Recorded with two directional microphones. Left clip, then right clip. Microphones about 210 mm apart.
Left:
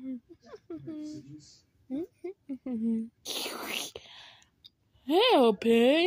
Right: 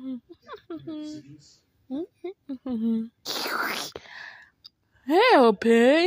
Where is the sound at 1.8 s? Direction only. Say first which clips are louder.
Right 3 dB; 15° right (ahead or behind).